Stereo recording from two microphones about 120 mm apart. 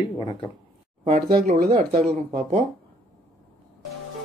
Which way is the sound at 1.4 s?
90° right.